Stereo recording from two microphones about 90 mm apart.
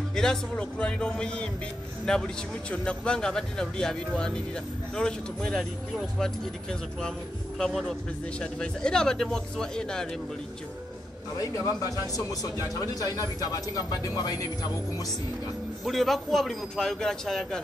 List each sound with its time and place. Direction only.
0.1 s a man's voice: 5° left (ahead or behind)
11.3 s speech: 40° left (ahead or behind)
15.8 s a man's voice: centre (ahead or behind)